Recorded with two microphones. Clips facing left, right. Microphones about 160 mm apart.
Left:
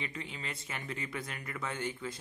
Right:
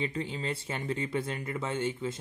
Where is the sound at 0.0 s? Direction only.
30° right (ahead or behind).